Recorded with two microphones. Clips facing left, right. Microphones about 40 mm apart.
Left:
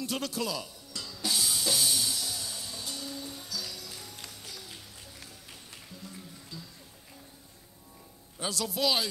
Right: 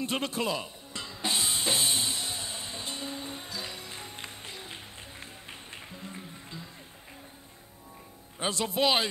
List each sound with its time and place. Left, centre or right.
0.0 s music: right
8.4 s a man's voice: right